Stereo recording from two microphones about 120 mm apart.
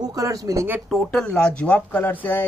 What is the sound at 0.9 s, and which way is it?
Speech, 5° left (ahead or behind).